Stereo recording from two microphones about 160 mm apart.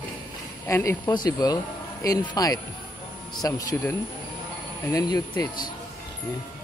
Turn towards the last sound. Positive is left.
turn(degrees=25)  # may be behind; listen again after turning